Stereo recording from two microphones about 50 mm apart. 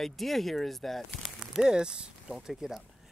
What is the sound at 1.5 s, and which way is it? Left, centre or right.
Speech, centre.